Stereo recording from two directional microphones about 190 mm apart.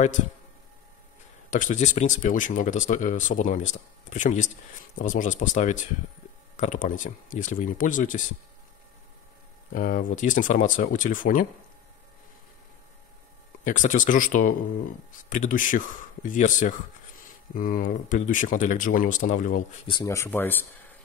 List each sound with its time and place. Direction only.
1.5 s speech: 40° left (ahead or behind)
9.7 s speech: 45° left (ahead or behind)
13.7 s speech: 45° left (ahead or behind)
19.9 s speech: 20° left (ahead or behind)